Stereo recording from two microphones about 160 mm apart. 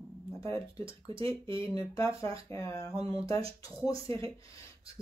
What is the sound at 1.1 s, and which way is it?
Speech, 35° right (ahead or behind).